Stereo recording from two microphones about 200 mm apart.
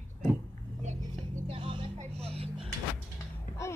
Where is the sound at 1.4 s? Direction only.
25° right (ahead or behind).